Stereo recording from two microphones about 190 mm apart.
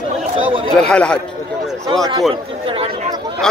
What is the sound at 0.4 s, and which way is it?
Speech, 25° right (ahead or behind).